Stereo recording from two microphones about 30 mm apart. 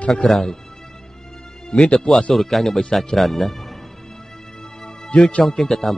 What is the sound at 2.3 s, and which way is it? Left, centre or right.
Speech, centre.